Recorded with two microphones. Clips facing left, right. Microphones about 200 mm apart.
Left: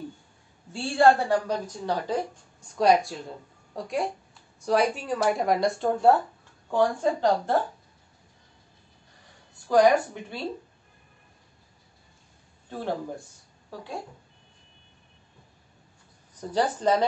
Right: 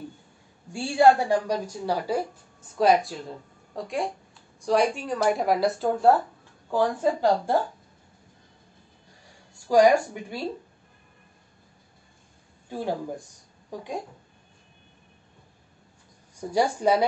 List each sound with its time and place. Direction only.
0.7 s a woman's voice: 10° right (ahead or behind)
9.7 s a woman's voice: 10° right (ahead or behind)
12.6 s speech: 10° right (ahead or behind)
16.3 s a woman's voice: 10° right (ahead or behind)